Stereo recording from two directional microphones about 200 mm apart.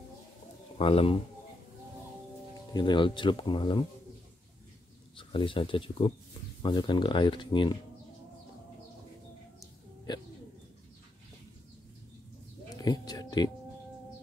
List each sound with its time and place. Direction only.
0.7 s speech: 30° left (ahead or behind)
2.7 s speech: 25° left (ahead or behind)
5.1 s speech: 25° left (ahead or behind)
10.1 s speech: 20° left (ahead or behind)
12.7 s a sound: 20° left (ahead or behind)